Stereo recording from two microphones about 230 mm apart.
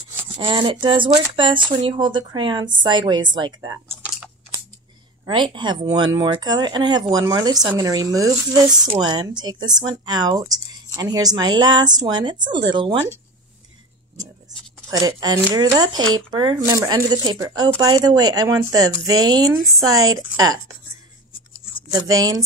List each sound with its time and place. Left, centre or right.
0.4 s speech: right
5.2 s speech: centre
14.9 s speech: centre
21.9 s speech: centre